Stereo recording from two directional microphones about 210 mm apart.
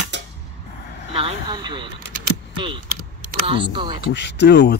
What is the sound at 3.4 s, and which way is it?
Speech, 25° right (ahead or behind).